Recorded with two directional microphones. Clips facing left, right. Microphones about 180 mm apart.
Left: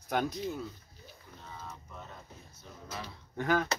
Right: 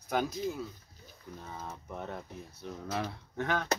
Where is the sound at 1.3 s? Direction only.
55° right (ahead or behind).